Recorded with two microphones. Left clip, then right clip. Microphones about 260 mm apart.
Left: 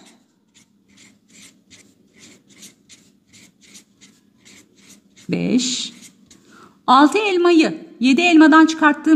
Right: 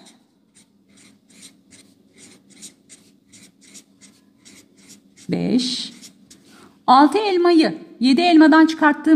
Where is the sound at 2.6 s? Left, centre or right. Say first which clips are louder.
Right 1 dB; right.